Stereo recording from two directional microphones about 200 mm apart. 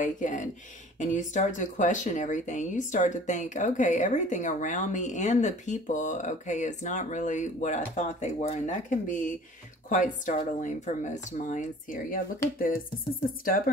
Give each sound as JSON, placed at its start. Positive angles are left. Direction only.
{"t": 0.0, "sound": "speech", "side_deg": 40}